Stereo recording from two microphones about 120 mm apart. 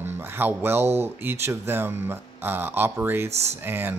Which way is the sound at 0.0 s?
15° right (ahead or behind).